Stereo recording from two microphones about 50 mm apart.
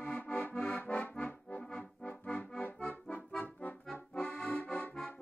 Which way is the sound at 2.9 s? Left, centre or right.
Left.